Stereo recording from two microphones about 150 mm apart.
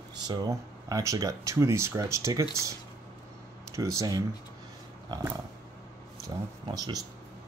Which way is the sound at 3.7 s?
20° right (ahead or behind).